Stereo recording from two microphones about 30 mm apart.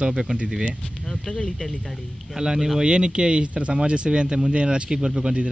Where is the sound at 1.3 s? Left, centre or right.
Left.